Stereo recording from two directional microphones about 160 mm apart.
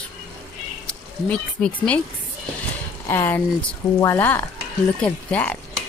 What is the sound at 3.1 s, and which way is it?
A woman's voice, 15° left (ahead or behind).